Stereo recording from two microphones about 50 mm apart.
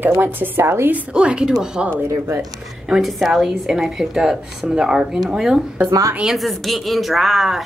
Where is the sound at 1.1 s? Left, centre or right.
Centre.